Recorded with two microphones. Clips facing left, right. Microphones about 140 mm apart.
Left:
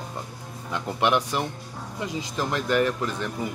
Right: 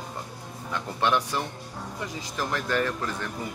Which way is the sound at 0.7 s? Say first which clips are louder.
Left 2 dB; 15° left (ahead or behind).